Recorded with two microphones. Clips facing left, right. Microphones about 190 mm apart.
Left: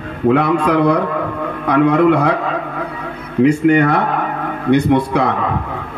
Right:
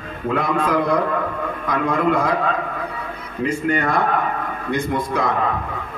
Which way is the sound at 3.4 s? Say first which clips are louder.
Left 9 dB; 70° left (ahead or behind).